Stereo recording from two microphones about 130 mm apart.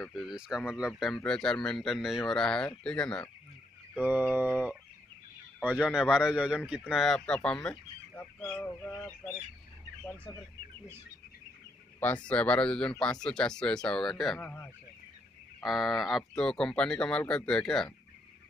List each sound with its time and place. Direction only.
0.0 s speech: centre (ahead or behind)
4.0 s a sound: 15° right (ahead or behind)
5.6 s speech: 10° right (ahead or behind); by 9.1 s 20° left (ahead or behind)
12.3 s speech: 10° left (ahead or behind)
15.6 s speech: centre (ahead or behind)